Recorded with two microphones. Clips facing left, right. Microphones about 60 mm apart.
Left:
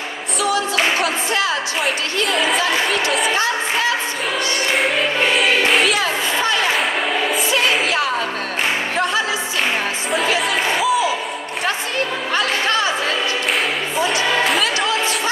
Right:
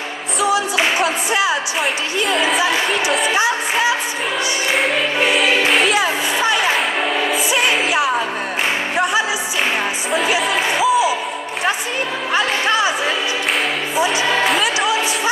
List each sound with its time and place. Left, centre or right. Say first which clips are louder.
0.4 s music: right 2 dB; centre
2.2 s music: right 2 dB; centre
3.3 s a woman's voice: right 2 dB; centre
4.7 s music: right 1 dB; centre
5.9 s a woman's voice: right 2 dB; centre
8.9 s music: right 4 dB; centre
10.4 s music: right 1 dB; centre
12.4 s a woman's voice: right 2 dB; centre